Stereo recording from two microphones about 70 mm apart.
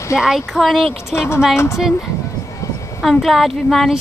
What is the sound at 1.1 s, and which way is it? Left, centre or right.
Speech, left.